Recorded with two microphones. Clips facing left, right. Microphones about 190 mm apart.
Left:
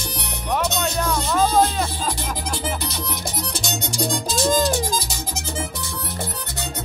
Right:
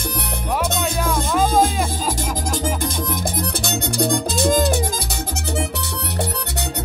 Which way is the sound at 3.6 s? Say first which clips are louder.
Right 4 dB; 60° right (ahead or behind).